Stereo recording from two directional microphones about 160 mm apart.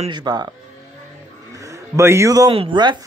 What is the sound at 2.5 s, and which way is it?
Speech, 35° right (ahead or behind).